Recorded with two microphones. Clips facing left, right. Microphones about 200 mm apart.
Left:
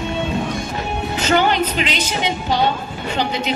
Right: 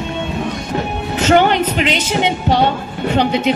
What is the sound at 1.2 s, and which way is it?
A woman's voice, 60° right (ahead or behind).